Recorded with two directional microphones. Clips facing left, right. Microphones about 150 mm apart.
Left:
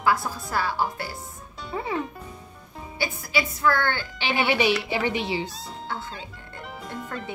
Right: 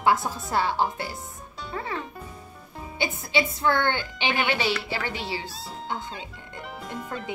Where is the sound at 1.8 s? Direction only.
15° left (ahead or behind).